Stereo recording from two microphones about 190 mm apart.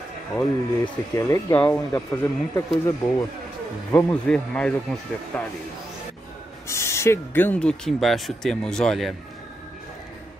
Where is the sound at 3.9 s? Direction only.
5° left (ahead or behind).